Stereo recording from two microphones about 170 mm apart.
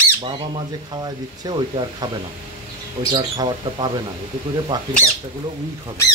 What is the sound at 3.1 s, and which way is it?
Speech, 30° right (ahead or behind).